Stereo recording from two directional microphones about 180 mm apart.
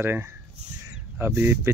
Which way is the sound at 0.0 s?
15° right (ahead or behind).